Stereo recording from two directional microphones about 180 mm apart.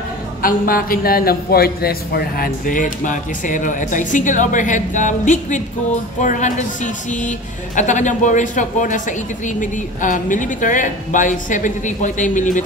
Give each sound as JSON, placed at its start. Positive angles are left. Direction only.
{"t": 0.4, "sound": "a woman's voice", "side_deg": 50}